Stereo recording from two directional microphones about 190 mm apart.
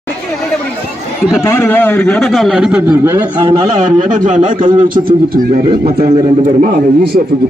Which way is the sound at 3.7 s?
40° right (ahead or behind).